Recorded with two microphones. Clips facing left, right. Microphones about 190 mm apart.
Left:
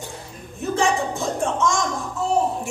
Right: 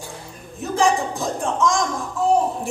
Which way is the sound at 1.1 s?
Centre (ahead or behind).